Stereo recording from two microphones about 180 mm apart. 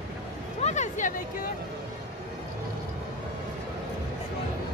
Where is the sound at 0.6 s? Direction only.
40° left (ahead or behind).